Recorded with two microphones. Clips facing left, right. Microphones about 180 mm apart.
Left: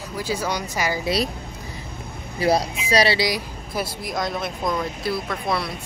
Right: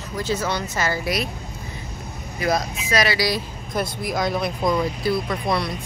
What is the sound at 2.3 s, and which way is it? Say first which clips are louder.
Speech: left 3 dB; 30° left (ahead or behind).